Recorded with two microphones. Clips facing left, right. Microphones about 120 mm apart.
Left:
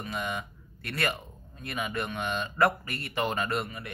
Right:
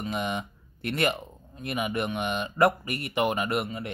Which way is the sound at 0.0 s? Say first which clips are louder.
Right 4 dB; 20° right (ahead or behind).